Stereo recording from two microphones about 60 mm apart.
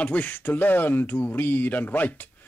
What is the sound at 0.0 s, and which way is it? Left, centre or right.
Speech, left.